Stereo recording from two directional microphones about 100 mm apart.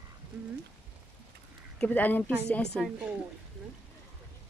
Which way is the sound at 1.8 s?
15° left (ahead or behind).